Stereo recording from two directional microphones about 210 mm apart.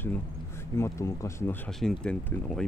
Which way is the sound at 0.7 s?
15° left (ahead or behind).